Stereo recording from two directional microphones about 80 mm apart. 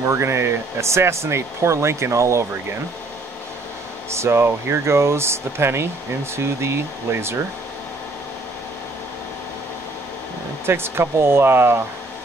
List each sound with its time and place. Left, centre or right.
0.0 s speech: right
4.1 s speech: right
10.6 s speech: right